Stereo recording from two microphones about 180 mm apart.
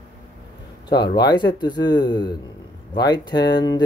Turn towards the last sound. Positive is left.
turn(degrees=25)  # may be behind; listen again after turning